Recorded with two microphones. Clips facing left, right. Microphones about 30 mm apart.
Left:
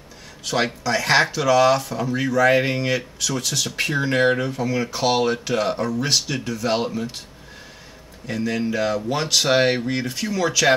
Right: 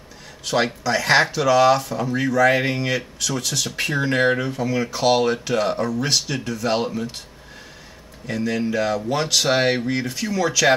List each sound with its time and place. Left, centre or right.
0.5 s speech: centre
8.3 s speech: centre